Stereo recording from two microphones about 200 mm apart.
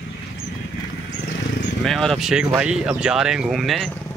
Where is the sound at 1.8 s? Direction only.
Centre (ahead or behind).